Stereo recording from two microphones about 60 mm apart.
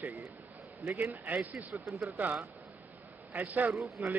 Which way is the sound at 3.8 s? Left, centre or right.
Centre.